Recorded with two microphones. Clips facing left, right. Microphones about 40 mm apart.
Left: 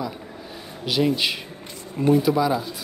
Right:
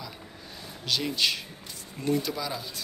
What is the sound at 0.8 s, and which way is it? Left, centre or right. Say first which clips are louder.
Speech: left 6 dB; centre.